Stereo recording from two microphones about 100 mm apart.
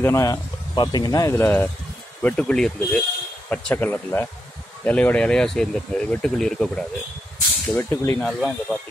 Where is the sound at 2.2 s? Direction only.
15° left (ahead or behind).